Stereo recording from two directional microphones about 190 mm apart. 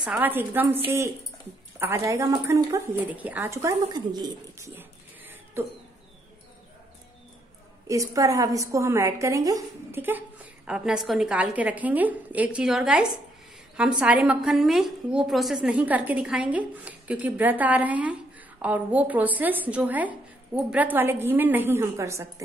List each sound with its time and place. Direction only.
0.0 s a woman's voice: 10° right (ahead or behind)
1.8 s a woman's voice: 15° right (ahead or behind)
7.9 s a woman's voice: 15° right (ahead or behind)